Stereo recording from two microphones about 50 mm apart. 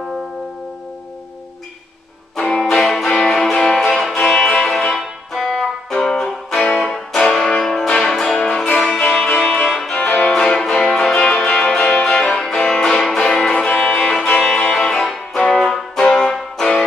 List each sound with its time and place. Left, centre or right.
2.3 s music: centre
8.7 s music: centre
9.7 s music: centre
9.9 s music: left
10.2 s music: centre